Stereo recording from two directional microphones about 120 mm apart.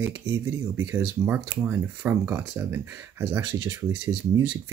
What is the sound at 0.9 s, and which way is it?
Speech, 15° right (ahead or behind).